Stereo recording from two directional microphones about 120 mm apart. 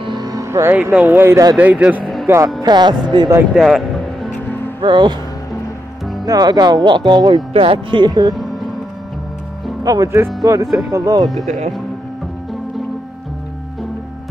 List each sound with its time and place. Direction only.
0.0 s speech: 35° right (ahead or behind); by 2.0 s 10° right (ahead or behind)
2.2 s speech: 25° right (ahead or behind)
2.6 s speech: 40° right (ahead or behind)
3.5 s music: centre (ahead or behind)
4.8 s speech: 40° right (ahead or behind)
6.2 s speech: 35° right (ahead or behind)
7.5 s speech: 50° right (ahead or behind)
9.8 s speech: 25° right (ahead or behind)
11.4 s speech: 90° right